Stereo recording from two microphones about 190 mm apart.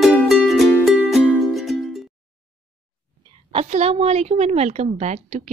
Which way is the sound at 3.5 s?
35° right (ahead or behind).